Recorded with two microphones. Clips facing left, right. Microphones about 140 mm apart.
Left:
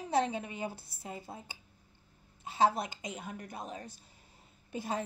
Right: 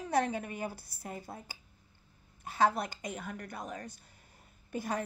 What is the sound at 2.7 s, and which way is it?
Speech, 50° right (ahead or behind).